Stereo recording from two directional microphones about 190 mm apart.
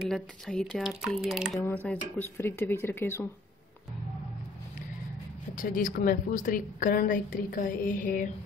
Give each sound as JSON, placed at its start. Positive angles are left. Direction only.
{"t": 0.0, "sound": "speech", "side_deg": 0}
{"t": 1.6, "sound": "speech", "side_deg": 10}
{"t": 5.6, "sound": "a woman's voice", "side_deg": 45}